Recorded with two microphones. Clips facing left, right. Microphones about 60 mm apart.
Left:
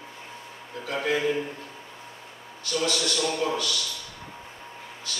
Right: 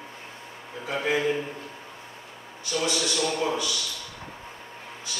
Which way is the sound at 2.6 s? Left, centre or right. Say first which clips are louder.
Even; centre.